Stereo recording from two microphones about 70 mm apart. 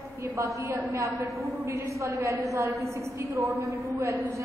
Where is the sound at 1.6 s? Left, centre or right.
Right.